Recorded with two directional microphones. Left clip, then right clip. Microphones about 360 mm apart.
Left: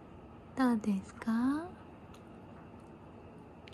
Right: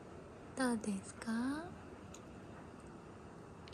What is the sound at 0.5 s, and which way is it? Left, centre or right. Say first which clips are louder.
A woman's voice: left 6 dB; centre.